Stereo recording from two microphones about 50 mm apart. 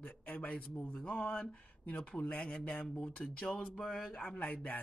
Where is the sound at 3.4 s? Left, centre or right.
Centre; by 4.7 s left.